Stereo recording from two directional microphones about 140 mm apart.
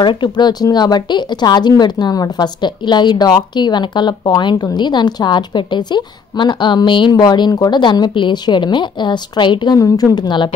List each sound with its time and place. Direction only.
0.0 s a woman's voice: 35° left (ahead or behind)